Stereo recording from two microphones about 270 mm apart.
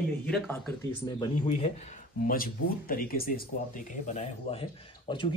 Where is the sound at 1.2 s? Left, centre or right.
Left.